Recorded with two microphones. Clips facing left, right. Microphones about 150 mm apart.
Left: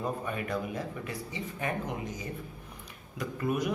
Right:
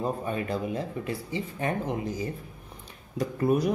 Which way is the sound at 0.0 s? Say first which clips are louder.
Right 4 dB; 30° right (ahead or behind).